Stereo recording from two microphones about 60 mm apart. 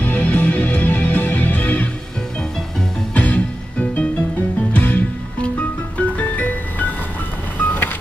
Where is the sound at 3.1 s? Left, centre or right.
Left.